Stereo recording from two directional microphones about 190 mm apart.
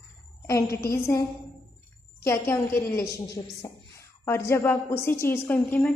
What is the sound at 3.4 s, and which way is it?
Speech, 25° left (ahead or behind).